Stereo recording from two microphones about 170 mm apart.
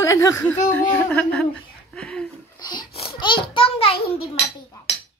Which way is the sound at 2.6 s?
25° left (ahead or behind).